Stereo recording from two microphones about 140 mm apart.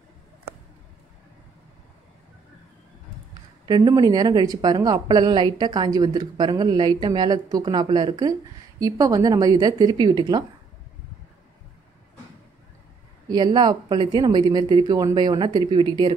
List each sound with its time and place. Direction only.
3.6 s a woman's voice: 30° right (ahead or behind)
13.3 s speech: 30° right (ahead or behind)